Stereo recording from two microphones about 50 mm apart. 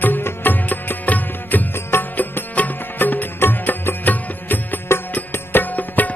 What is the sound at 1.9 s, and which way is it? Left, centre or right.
Music, left.